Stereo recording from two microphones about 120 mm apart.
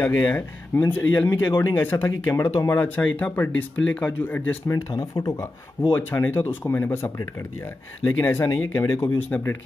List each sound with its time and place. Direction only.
0.0 s speech: 15° left (ahead or behind)
3.0 s speech: 15° left (ahead or behind)
4.6 s speech: 25° left (ahead or behind)